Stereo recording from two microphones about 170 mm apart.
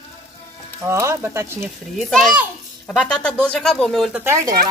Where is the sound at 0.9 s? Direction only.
15° right (ahead or behind).